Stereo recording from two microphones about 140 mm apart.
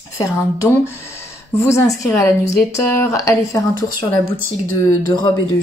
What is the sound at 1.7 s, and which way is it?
Speech, 20° left (ahead or behind).